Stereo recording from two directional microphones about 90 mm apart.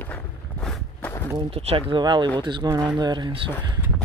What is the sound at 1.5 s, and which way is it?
Speech, 85° right.